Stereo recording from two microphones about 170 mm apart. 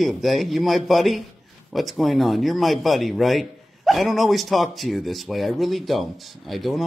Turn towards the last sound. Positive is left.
turn(degrees=0)  # may be behind; listen again after turning